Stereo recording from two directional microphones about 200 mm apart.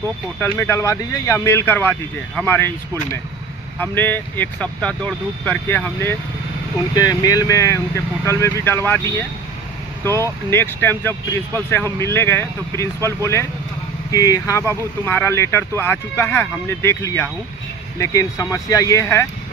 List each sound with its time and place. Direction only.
0.4 s speech: 10° left (ahead or behind)